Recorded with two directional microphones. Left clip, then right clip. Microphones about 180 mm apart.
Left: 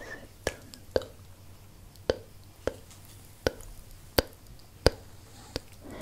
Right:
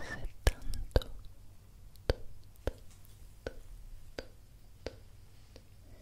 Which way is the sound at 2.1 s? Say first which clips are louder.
Left 7 dB; 15° right (ahead or behind).